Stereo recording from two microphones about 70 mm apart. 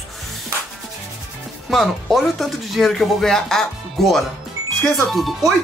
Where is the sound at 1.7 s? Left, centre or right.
Centre.